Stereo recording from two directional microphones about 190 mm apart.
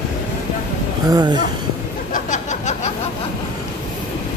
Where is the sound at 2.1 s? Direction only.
40° left (ahead or behind).